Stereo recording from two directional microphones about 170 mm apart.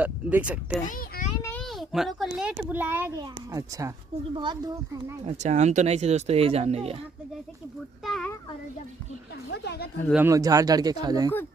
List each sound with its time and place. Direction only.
0.0 s speech: 10° right (ahead or behind)
0.8 s a sound: 50° left (ahead or behind)
1.6 s a child's voice: centre (ahead or behind); by 5.0 s 30° right (ahead or behind)
5.2 s speech: 40° right (ahead or behind)
8.0 s a child's voice: 5° left (ahead or behind)
9.5 s speech: 75° left (ahead or behind)
10.1 s speech: 15° right (ahead or behind)